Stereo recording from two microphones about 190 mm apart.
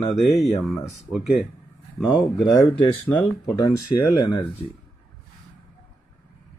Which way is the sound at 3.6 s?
20° left (ahead or behind).